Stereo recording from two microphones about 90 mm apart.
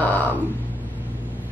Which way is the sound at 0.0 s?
15° left (ahead or behind).